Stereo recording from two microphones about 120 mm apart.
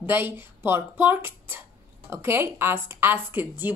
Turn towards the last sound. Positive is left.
turn(degrees=-15)  # may be behind; listen again after turning